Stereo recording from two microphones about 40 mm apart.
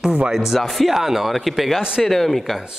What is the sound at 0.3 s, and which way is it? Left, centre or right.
Speech, centre.